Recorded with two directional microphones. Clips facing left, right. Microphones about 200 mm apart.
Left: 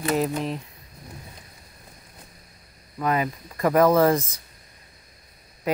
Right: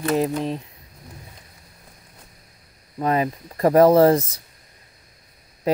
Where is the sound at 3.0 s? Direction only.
30° right (ahead or behind).